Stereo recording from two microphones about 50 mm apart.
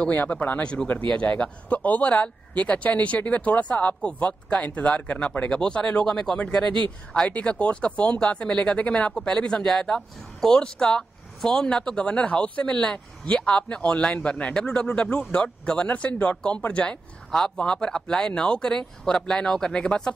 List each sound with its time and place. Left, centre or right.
0.1 s speech: left
6.0 s speech: centre
7.2 s speech: left